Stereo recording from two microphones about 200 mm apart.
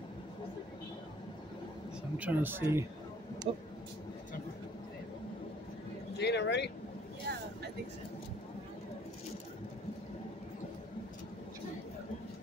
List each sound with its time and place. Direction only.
2.1 s speech: 10° right (ahead or behind)
3.5 s speech: 30° right (ahead or behind)
6.1 s speech: 55° left (ahead or behind)
7.3 s vehicle: 55° right (ahead or behind)